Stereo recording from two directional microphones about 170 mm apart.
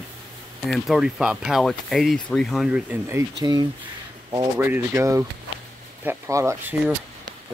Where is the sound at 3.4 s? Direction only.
25° right (ahead or behind).